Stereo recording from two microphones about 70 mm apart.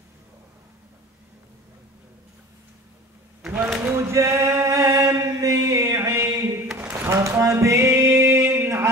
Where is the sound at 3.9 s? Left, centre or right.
Right.